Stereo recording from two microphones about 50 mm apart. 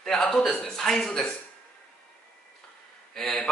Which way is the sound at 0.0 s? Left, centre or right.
Centre.